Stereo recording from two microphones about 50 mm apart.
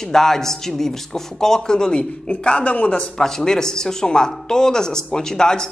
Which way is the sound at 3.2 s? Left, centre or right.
Centre.